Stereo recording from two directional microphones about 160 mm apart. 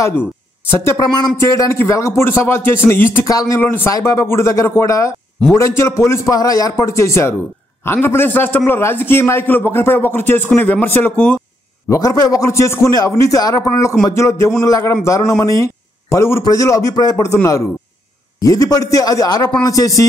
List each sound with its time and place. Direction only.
0.7 s a man's voice: 15° left (ahead or behind)
11.9 s a man's voice: 20° left (ahead or behind)